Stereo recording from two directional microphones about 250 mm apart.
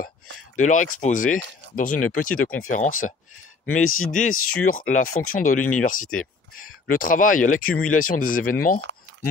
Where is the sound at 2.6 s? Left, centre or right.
Left.